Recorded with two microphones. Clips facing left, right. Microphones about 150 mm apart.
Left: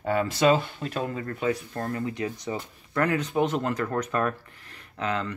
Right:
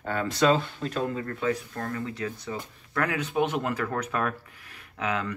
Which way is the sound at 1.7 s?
30° left (ahead or behind).